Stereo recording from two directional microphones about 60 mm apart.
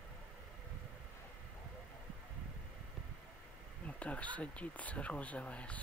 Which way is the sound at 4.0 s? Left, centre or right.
Left.